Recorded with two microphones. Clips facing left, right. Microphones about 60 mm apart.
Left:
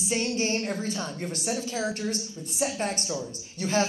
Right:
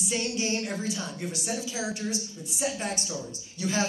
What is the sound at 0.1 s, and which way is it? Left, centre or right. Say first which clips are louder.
A man's voice: left 3 dB; left.